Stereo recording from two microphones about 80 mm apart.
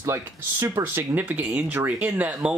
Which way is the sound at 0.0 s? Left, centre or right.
Right.